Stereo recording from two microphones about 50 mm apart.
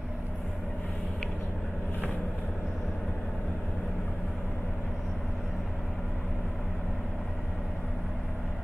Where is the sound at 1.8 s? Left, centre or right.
Left.